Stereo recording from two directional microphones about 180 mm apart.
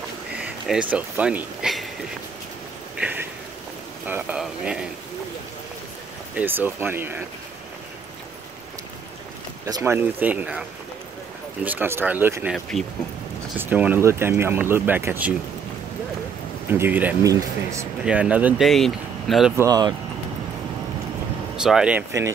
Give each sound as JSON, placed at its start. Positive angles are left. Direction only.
{"t": 0.4, "sound": "speech", "side_deg": -5}
{"t": 3.0, "sound": "a sound", "side_deg": -10}
{"t": 4.0, "sound": "speech", "side_deg": -10}
{"t": 6.3, "sound": "speech", "side_deg": -10}
{"t": 9.7, "sound": "speech", "side_deg": -20}
{"t": 11.6, "sound": "speech", "side_deg": -10}
{"t": 12.5, "sound": "speech", "side_deg": 0}
{"t": 13.6, "sound": "speech", "side_deg": -10}
{"t": 16.7, "sound": "speech", "side_deg": -10}
{"t": 18.0, "sound": "speech", "side_deg": -5}
{"t": 19.5, "sound": "speech", "side_deg": -20}
{"t": 21.5, "sound": "speech", "side_deg": -5}